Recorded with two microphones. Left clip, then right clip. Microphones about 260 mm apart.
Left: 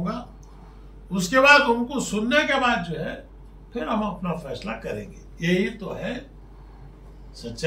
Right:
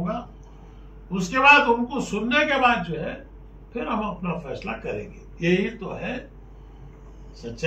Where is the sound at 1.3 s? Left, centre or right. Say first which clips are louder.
Even; centre.